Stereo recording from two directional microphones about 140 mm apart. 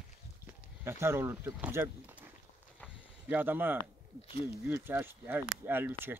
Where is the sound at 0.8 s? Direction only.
20° right (ahead or behind).